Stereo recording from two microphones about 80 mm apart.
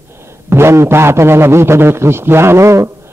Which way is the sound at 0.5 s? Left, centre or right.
Right.